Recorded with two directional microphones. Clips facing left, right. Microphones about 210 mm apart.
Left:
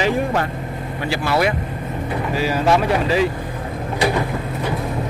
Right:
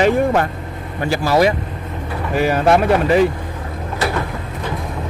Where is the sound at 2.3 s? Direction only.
55° right (ahead or behind).